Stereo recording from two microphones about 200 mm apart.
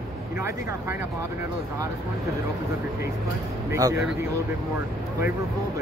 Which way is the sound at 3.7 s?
15° right (ahead or behind).